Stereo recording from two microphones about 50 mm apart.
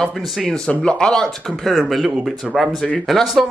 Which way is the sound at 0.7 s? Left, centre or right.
Left.